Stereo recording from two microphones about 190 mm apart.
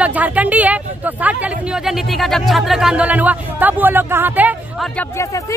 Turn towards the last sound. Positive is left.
turn(degrees=-10)  # may be behind; listen again after turning